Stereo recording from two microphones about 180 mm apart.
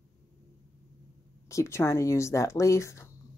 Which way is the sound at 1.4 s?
15° left (ahead or behind).